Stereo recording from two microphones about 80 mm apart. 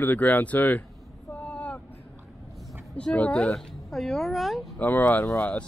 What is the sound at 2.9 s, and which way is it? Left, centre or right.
Speech, centre.